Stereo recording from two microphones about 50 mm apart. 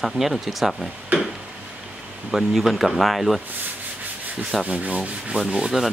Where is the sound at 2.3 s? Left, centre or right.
Centre.